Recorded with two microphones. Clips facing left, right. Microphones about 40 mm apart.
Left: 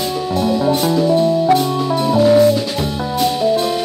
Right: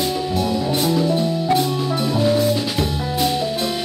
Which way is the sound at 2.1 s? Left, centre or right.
Centre.